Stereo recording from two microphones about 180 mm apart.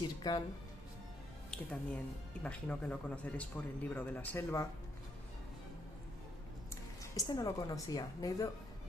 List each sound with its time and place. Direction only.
0.2 s speech: 20° left (ahead or behind)
1.5 s speech: 5° left (ahead or behind)
6.7 s a woman's voice: 20° left (ahead or behind)